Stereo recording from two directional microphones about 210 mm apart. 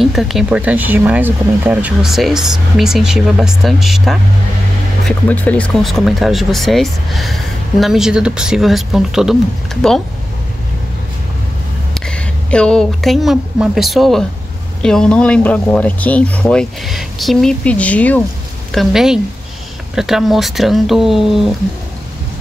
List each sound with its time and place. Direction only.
0.0 s speech: centre (ahead or behind)
11.9 s speech: 5° left (ahead or behind)